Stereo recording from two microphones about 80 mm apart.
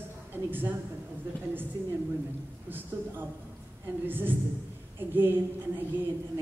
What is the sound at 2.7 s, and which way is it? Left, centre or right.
A woman's voice, right.